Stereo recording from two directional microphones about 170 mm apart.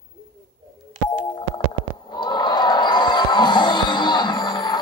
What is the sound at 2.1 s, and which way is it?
Music, 25° left (ahead or behind).